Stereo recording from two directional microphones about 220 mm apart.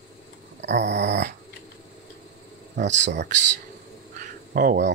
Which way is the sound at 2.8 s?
55° right (ahead or behind).